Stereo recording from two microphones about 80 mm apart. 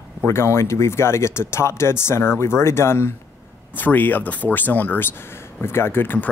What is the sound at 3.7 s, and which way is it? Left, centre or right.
Speech, left.